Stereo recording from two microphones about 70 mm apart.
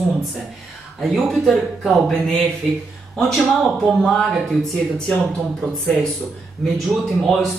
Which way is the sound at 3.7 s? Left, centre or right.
Centre.